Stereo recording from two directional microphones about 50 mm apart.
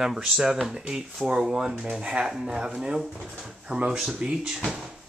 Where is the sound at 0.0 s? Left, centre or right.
Centre.